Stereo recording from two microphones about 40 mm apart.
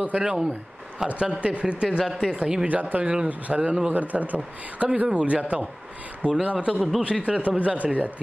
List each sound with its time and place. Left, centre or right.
0.2 s speech: centre
1.0 s speech: right
2.7 s speech: right
3.0 s speech: right